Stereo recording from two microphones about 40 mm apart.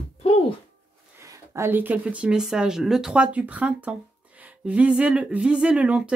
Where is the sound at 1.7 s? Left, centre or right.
Right.